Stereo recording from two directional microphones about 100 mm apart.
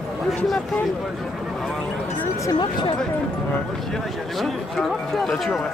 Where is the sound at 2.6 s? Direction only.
50° left (ahead or behind).